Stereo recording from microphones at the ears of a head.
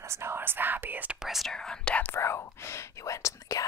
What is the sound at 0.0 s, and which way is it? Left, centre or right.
Speech, right.